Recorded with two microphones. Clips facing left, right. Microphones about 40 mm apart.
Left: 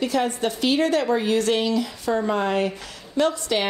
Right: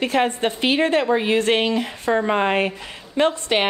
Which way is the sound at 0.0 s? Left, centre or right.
Right.